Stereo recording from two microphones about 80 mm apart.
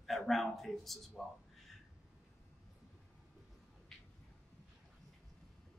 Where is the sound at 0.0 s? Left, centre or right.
Centre.